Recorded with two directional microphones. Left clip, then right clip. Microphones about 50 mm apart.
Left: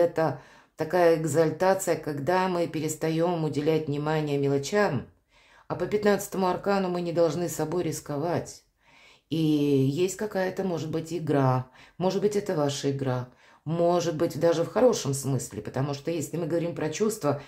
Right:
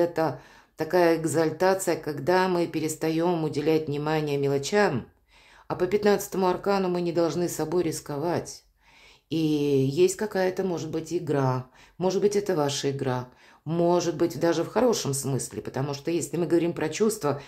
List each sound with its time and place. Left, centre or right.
0.0 s a woman's voice: centre
6.0 s a woman's voice: centre
10.9 s speech: centre
12.2 s a woman's voice: centre
12.5 s a woman's voice: right
13.7 s a woman's voice: centre
14.9 s a woman's voice: right
15.5 s a woman's voice: centre
16.3 s a woman's voice: right
17.1 s a woman's voice: centre